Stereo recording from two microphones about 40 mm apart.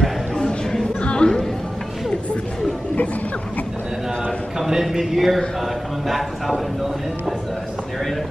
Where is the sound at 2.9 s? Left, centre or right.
Left.